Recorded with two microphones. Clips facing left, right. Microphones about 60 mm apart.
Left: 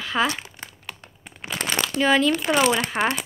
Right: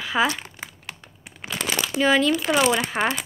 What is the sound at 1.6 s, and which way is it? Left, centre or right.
Crumpling, centre.